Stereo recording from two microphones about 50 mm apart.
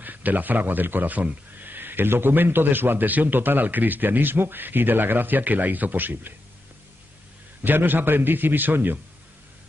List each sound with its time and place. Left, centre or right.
0.0 s speech: right
7.6 s speech: right